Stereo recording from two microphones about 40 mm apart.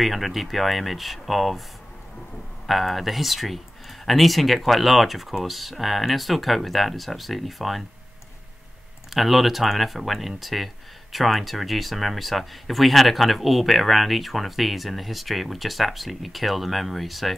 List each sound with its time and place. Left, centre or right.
0.0 s speech: centre
2.6 s speech: centre
9.1 s speech: centre